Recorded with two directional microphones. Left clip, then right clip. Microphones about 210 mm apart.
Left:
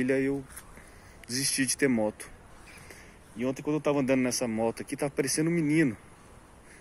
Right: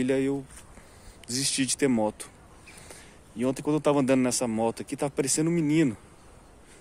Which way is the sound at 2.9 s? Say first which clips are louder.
Right 1 dB; 20° right (ahead or behind).